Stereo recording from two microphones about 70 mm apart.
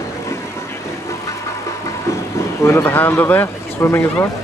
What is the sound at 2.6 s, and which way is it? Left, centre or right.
Speech, left.